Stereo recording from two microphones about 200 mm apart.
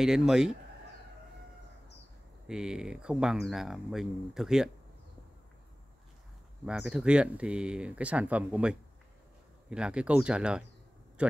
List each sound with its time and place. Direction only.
0.0 s speech: 5° right (ahead or behind)
2.4 s speech: 5° right (ahead or behind)
6.6 s speech: 5° right (ahead or behind)
11.2 s a sound: 5° right (ahead or behind)